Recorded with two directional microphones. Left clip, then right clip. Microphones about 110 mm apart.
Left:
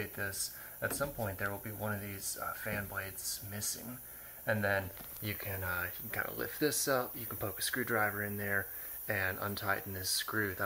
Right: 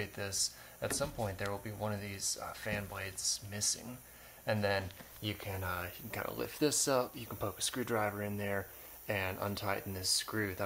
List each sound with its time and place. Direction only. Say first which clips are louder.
0.0 s speech: right 1 dB; 25° right (ahead or behind)
4.5 s speech: left 1 dB; 25° right (ahead or behind)